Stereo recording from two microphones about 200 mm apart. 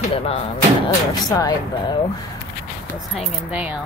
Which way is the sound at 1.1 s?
20° left (ahead or behind).